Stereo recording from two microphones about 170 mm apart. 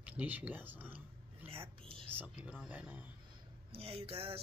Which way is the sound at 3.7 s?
35° right (ahead or behind).